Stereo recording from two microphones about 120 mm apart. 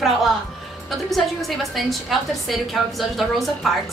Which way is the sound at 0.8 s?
Centre (ahead or behind).